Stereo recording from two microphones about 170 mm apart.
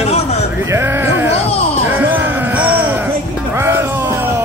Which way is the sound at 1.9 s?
10° right (ahead or behind).